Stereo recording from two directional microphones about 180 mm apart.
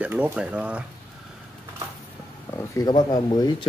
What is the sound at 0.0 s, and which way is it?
Speech, 10° right (ahead or behind).